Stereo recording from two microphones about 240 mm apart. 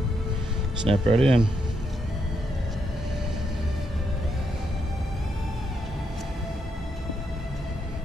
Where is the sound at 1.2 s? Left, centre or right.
Centre.